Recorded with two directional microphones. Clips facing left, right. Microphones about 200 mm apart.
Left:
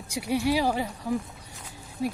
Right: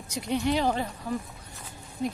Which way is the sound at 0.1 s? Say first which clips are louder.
Left 1 dB; 10° left (ahead or behind).